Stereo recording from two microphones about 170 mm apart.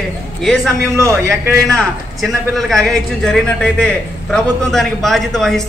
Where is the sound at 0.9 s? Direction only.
15° right (ahead or behind).